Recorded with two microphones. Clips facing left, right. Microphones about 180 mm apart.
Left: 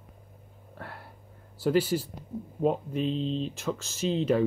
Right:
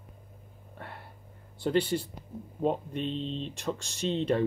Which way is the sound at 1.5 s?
5° left (ahead or behind).